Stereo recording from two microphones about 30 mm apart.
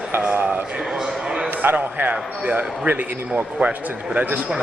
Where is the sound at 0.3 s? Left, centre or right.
Right.